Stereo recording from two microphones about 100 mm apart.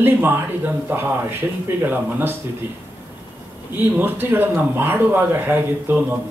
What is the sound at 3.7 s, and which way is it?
A man's voice, 20° right (ahead or behind).